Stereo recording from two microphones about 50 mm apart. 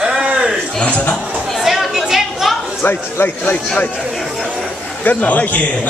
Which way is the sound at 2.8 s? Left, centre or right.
Left.